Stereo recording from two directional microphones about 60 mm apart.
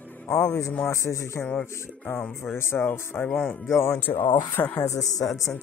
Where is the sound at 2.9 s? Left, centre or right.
Left.